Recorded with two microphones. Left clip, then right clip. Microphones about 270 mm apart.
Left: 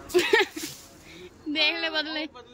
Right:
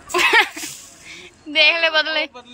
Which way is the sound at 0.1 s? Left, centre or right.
Centre.